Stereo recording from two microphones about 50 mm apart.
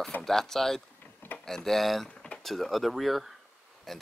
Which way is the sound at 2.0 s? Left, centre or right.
Left.